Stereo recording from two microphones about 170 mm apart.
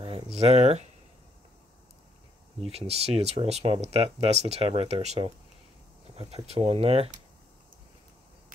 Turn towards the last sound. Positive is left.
turn(degrees=-35)  # may be behind; listen again after turning